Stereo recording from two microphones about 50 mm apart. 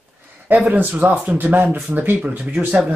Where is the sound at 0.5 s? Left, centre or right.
Right.